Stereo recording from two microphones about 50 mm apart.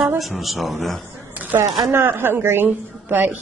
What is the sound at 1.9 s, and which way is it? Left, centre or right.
A woman's voice, right.